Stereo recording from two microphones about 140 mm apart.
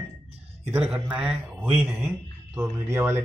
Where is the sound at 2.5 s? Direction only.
20° right (ahead or behind).